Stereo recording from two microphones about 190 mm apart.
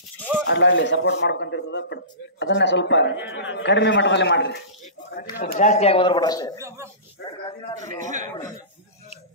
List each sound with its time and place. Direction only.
0.5 s a man's voice: 65° left (ahead or behind)
5.2 s speech: 50° left (ahead or behind)
5.5 s a man's voice: 35° left (ahead or behind); by 6.6 s 20° left (ahead or behind)
7.7 s a man's voice: 40° right (ahead or behind)